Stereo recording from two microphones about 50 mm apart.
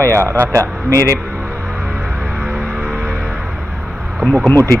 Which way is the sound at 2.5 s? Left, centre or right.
Centre.